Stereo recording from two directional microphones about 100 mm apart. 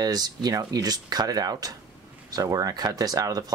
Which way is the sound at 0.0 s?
40° right (ahead or behind).